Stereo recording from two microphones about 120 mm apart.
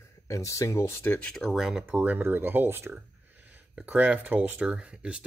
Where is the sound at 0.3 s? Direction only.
25° left (ahead or behind).